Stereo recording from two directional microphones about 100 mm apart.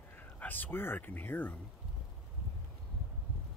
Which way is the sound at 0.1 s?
20° left (ahead or behind).